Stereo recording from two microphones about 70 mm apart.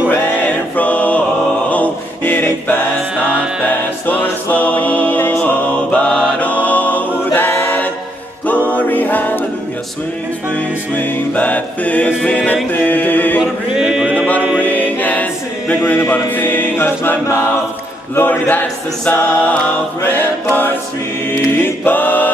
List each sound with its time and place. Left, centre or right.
0.7 s choir: left
1.7 s chant: left
4.0 s music: left
7.3 s choir: left
8.7 s music: left
10.5 s choir: left
12.8 s music: left
13.4 s chant: centre
14.1 s music: left
15.8 s choir: left
18.1 s a capella: left
20.0 s choir: left